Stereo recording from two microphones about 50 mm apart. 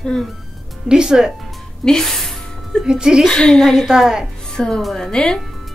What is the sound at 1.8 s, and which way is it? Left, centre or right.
Speech, centre.